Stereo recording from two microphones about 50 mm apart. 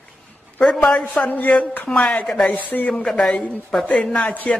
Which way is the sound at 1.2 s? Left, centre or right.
Left.